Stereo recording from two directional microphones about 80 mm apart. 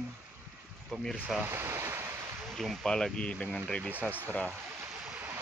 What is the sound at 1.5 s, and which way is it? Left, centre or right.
Ocean, right.